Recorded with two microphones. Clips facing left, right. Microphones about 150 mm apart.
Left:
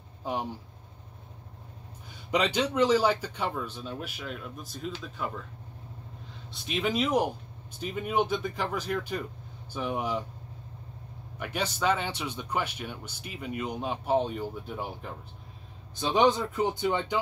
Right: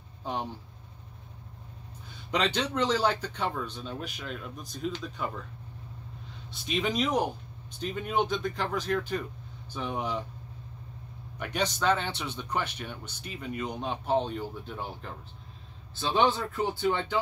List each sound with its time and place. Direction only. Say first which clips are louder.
0.2 s a sound: left 1 dB; 10° left (ahead or behind)
2.3 s speech: left 2 dB; 10° left (ahead or behind)
6.5 s speech: even; centre (ahead or behind)
11.3 s speech: right 1 dB; 5° left (ahead or behind)